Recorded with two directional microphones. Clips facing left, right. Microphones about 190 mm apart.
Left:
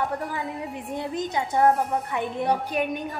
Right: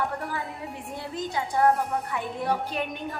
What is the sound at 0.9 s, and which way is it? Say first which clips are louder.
A woman's voice: left 4 dB; 20° left (ahead or behind).